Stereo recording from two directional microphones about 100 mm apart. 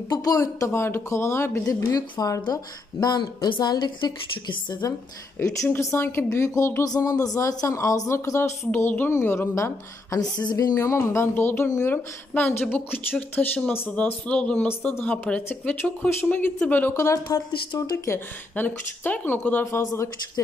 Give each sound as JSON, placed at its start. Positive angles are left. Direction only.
{"t": 0.1, "sound": "speech", "side_deg": 35}
{"t": 1.8, "sound": "a woman's voice", "side_deg": 40}
{"t": 5.7, "sound": "a woman's voice", "side_deg": 25}
{"t": 8.7, "sound": "speech", "side_deg": 20}
{"t": 10.3, "sound": "speech", "side_deg": 45}
{"t": 16.9, "sound": "speech", "side_deg": 30}